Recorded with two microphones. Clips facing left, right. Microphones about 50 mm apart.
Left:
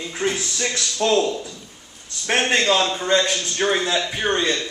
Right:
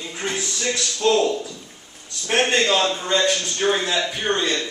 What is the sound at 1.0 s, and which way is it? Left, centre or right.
Speech, left.